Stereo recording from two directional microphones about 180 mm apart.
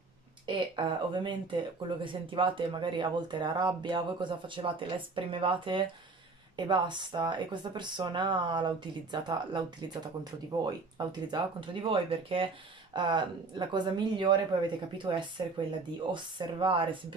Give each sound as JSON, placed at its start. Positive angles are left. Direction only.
{"t": 0.5, "sound": "speech", "side_deg": -25}
{"t": 10.6, "sound": "speech", "side_deg": -25}